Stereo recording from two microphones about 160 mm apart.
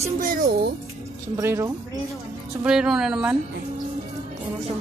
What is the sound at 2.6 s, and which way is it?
Speech, 5° right (ahead or behind).